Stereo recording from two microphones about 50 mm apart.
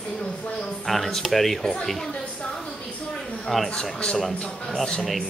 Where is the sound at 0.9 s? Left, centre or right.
Centre.